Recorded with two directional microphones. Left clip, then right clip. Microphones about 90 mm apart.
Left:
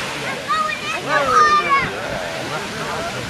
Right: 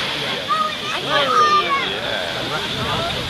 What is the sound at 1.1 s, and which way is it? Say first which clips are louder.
Children playing: left 1 dB; 30° left (ahead or behind).